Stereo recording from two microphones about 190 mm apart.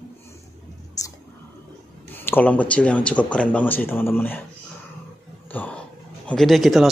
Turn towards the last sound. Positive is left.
turn(degrees=0)  # may be behind; listen again after turning